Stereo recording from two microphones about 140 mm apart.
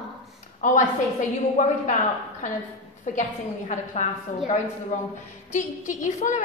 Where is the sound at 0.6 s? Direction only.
65° left (ahead or behind).